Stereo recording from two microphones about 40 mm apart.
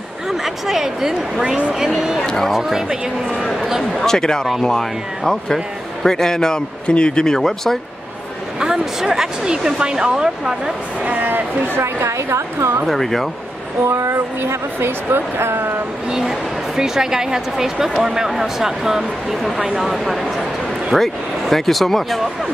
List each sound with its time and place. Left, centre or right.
0.3 s a woman's voice: centre
2.2 s a man's voice: centre
2.5 s a woman's voice: centre
3.9 s a man's voice: centre
7.3 s a man's voice: centre
8.5 s a woman's voice: centre
11.0 s speech: right
12.8 s speech: centre
14.1 s speech: right
16.1 s a woman's voice: centre